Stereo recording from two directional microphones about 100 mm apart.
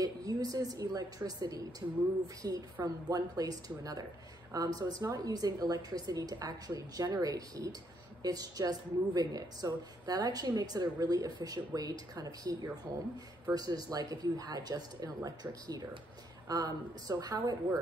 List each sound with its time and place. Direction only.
0.0 s a woman's voice: 40° right (ahead or behind)